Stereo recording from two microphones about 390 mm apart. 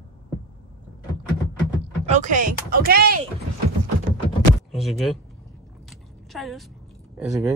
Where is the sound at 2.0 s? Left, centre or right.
Centre.